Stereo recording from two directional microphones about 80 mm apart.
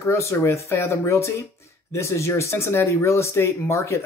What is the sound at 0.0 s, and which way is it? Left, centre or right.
Speech, left.